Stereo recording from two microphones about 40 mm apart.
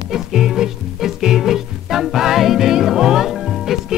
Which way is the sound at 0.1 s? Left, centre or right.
Centre.